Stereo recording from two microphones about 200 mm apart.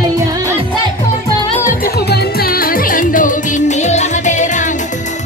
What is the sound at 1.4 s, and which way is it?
Music, 40° left (ahead or behind).